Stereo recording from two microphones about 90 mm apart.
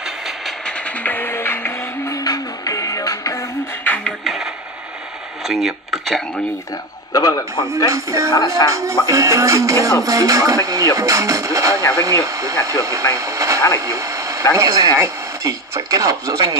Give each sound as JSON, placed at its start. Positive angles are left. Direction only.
{"t": 0.7, "sound": "music", "side_deg": 15}
{"t": 2.1, "sound": "music", "side_deg": 45}
{"t": 3.8, "sound": "music", "side_deg": 20}
{"t": 4.2, "sound": "radio", "side_deg": 0}
{"t": 5.5, "sound": "speech", "side_deg": 0}
{"t": 7.1, "sound": "a man's voice", "side_deg": 40}
{"t": 7.9, "sound": "speech", "side_deg": -35}
{"t": 8.3, "sound": "speech", "side_deg": 45}
{"t": 8.6, "sound": "speech", "side_deg": -35}